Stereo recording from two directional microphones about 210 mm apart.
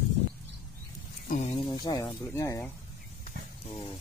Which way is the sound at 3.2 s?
30° left (ahead or behind).